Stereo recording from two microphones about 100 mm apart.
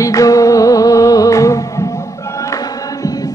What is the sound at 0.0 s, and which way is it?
Music, 35° left (ahead or behind).